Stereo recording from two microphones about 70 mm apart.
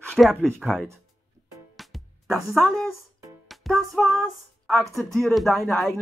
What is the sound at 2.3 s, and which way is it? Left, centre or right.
Speech, centre.